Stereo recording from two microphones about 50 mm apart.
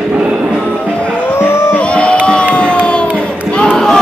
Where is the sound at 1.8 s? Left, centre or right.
Left.